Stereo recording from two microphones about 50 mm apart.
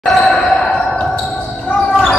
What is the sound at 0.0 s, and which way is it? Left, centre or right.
Basketball bounce, centre.